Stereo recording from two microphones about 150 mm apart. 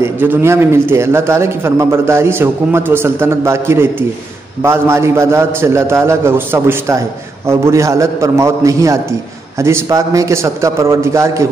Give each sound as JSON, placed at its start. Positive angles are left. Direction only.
{"t": 0.0, "sound": "a man's voice", "side_deg": -15}